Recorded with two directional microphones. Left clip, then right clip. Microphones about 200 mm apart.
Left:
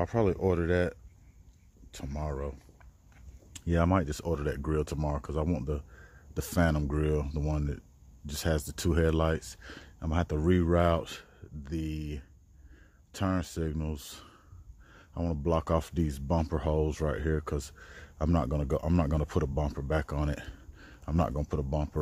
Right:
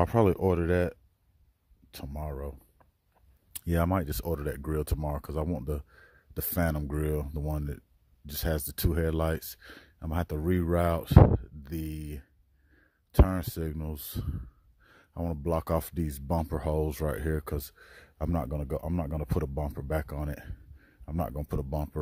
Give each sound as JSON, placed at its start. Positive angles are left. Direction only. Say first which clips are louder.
{"t": 0.0, "sound": "speech", "louder": "right 3 dB", "side_deg": -45}
{"t": 2.0, "sound": "speech", "louder": "left 2 dB", "side_deg": -25}
{"t": 3.5, "sound": "speech", "louder": "left 1 dB", "side_deg": -35}